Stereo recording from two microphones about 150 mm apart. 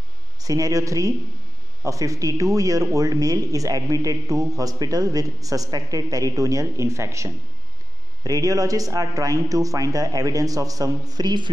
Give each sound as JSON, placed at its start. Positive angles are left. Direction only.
{"t": 0.4, "sound": "speech", "side_deg": -25}